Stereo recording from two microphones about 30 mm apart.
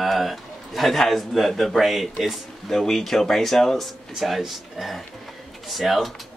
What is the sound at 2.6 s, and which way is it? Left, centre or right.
Speech, centre.